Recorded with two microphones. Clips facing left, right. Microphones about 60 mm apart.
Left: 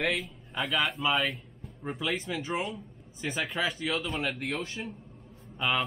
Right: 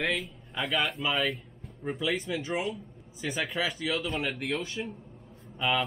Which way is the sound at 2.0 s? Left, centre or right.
Centre.